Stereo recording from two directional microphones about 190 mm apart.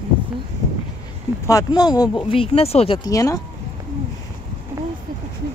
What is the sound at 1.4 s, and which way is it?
Speech, 20° left (ahead or behind).